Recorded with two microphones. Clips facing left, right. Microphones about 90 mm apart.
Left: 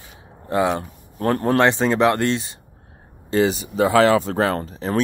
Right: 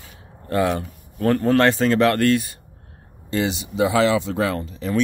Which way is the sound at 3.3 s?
40° left (ahead or behind).